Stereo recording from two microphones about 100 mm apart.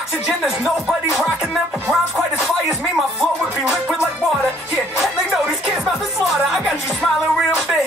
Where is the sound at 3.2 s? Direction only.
Centre (ahead or behind).